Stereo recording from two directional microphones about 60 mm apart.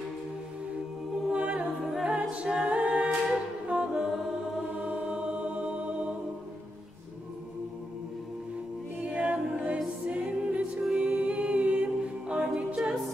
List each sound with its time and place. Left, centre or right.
1.3 s a capella: centre
3.6 s music: centre
9.0 s a capella: right
10.0 s music: right
10.8 s a capella: centre